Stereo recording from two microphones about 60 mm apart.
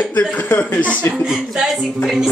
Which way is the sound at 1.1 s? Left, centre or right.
Centre.